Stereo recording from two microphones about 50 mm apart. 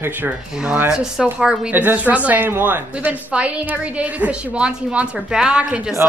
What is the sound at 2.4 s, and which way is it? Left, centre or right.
Speech, right.